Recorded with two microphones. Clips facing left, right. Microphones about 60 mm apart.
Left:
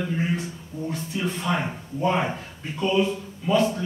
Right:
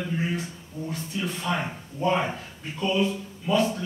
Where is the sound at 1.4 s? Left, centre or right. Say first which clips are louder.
Left 2 dB; centre.